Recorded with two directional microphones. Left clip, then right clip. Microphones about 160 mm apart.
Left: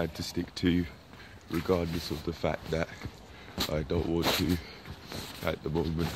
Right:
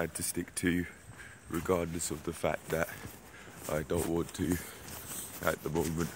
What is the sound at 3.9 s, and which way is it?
Speech, 5° right (ahead or behind).